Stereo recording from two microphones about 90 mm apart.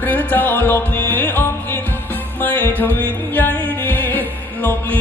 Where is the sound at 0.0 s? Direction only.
20° left (ahead or behind).